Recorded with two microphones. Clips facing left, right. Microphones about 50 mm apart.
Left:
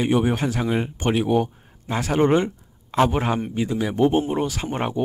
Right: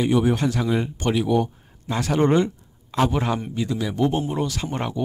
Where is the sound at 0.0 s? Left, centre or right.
Left.